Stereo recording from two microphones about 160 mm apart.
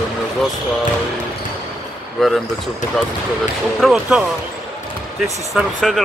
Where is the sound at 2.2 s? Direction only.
Centre (ahead or behind).